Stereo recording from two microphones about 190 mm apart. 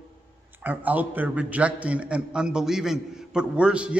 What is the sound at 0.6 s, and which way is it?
A man's voice, 10° right (ahead or behind).